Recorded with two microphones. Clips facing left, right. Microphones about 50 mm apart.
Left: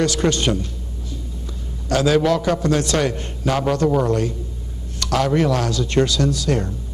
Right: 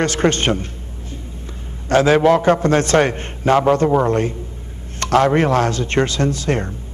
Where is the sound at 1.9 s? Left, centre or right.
Right.